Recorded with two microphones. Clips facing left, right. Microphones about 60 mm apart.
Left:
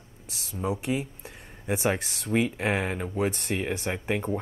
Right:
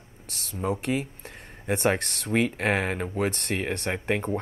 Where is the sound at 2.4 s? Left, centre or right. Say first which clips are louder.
Right 2 dB; right.